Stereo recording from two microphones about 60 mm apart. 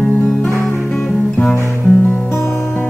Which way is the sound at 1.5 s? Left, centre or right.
Left.